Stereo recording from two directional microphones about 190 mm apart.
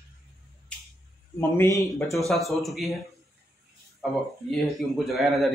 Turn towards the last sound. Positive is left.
turn(degrees=0)  # may be behind; listen again after turning